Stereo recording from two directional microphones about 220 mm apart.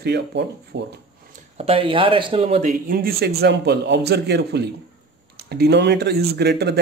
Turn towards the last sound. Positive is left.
turn(degrees=-50)  # may be behind; listen again after turning